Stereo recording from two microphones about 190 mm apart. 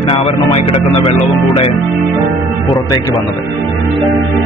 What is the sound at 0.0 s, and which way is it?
Speech, 30° left (ahead or behind).